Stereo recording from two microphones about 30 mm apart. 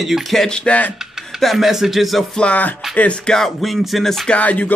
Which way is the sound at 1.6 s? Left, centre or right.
Centre.